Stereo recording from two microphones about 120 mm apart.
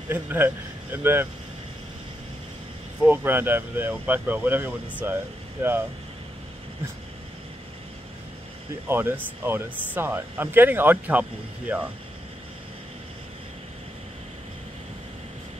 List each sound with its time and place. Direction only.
0.1 s speech: 15° right (ahead or behind)
3.1 s speech: 15° right (ahead or behind)
8.8 s speech: 20° right (ahead or behind)